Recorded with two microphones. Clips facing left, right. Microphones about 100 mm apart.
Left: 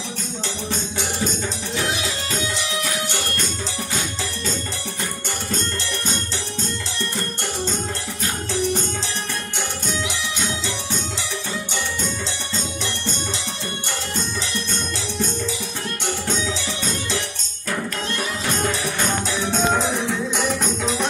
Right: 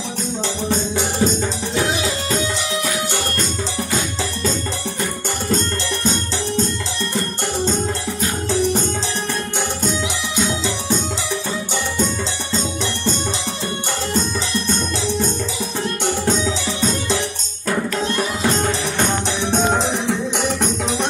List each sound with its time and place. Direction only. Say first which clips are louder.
0.7 s music: right 7 dB; 35° right (ahead or behind)
18.0 s music: right 6 dB; 30° right (ahead or behind)